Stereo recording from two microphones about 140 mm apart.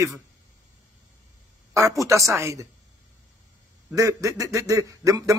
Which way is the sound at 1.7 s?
20° right (ahead or behind).